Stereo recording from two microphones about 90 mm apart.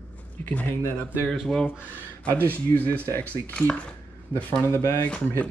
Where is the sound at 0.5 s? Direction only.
20° left (ahead or behind).